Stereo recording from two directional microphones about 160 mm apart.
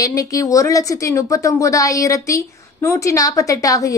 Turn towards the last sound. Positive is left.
turn(degrees=20)  # may be behind; listen again after turning